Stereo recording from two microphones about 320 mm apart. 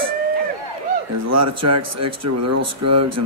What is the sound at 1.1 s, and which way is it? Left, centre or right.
Speech, right.